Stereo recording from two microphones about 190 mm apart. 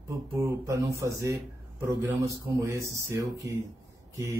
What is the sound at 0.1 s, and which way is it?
Speech, 15° right (ahead or behind).